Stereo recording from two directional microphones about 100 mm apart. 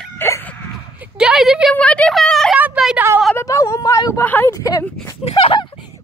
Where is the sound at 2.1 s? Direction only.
5° left (ahead or behind).